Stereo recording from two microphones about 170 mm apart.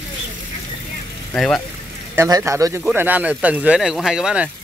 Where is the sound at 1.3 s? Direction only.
5° left (ahead or behind).